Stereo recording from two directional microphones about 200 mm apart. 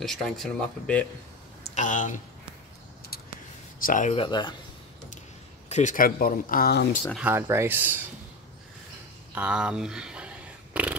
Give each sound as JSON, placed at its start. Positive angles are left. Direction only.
{"t": 0.0, "sound": "speech", "side_deg": 0}
{"t": 1.8, "sound": "speech", "side_deg": 40}
{"t": 3.8, "sound": "speech", "side_deg": 40}
{"t": 4.2, "sound": "speech", "side_deg": 25}
{"t": 5.7, "sound": "speech", "side_deg": 35}
{"t": 7.2, "sound": "speech", "side_deg": -10}
{"t": 9.3, "sound": "a sound", "side_deg": -5}